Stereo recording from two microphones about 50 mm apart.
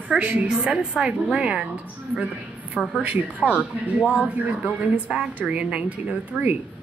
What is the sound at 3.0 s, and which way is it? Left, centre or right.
Speech, right.